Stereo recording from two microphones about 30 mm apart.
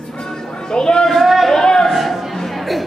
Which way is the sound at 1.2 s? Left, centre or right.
Centre.